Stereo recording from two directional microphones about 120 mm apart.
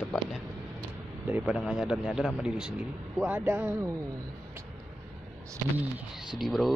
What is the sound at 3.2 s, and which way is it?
Speech, 20° right (ahead or behind).